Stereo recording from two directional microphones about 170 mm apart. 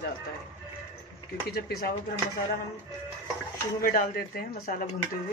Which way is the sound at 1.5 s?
60° left (ahead or behind).